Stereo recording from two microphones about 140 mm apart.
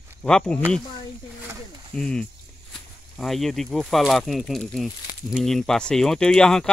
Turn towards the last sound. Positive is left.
turn(degrees=5)  # may be behind; listen again after turning